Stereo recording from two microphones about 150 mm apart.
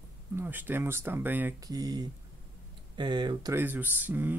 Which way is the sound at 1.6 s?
25° right (ahead or behind).